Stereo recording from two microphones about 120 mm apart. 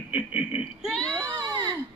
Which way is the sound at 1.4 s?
35° right (ahead or behind).